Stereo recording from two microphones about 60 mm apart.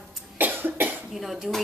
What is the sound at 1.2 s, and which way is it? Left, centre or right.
Speech, centre.